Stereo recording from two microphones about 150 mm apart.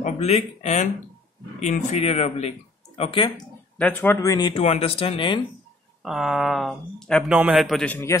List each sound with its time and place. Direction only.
0.0 s speech: 45° left (ahead or behind)
3.7 s speech: 10° left (ahead or behind); by 5.4 s 35° left (ahead or behind)
6.0 s speech: centre (ahead or behind)
7.2 s speech: 10° right (ahead or behind); by 8.2 s 15° left (ahead or behind)